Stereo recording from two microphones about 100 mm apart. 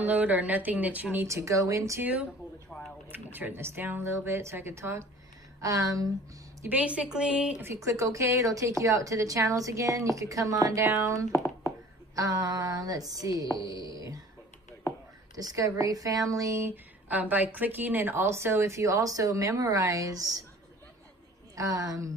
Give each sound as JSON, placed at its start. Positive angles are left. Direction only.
{"t": 0.0, "sound": "a woman's voice", "side_deg": -15}
{"t": 1.1, "sound": "speech", "side_deg": -30}
{"t": 3.3, "sound": "a woman's voice", "side_deg": -20}
{"t": 6.7, "sound": "a woman's voice", "side_deg": -15}
{"t": 7.8, "sound": "speech", "side_deg": -30}
{"t": 15.3, "sound": "speech", "side_deg": -35}
{"t": 17.1, "sound": "a woman's voice", "side_deg": -15}
{"t": 21.5, "sound": "speech", "side_deg": -35}